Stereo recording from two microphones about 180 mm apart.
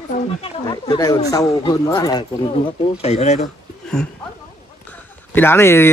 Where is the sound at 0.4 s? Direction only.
20° left (ahead or behind); by 3.4 s 40° left (ahead or behind).